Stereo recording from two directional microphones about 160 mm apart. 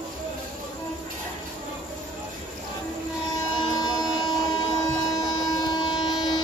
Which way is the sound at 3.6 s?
25° left (ahead or behind).